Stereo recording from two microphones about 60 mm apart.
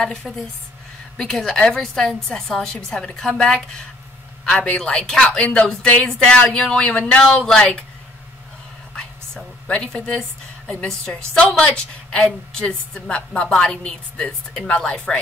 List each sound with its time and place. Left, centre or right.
0.0 s a woman's voice: centre
6.3 s a woman's voice: centre
8.9 s a sound: centre
11.1 s a woman's voice: centre